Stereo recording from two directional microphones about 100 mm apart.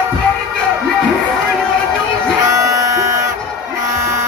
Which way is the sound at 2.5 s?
30° right (ahead or behind).